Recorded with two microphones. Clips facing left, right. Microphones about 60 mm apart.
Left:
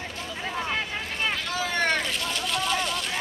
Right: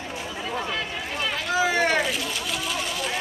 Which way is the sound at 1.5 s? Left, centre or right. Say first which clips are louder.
Right 6 dB; centre.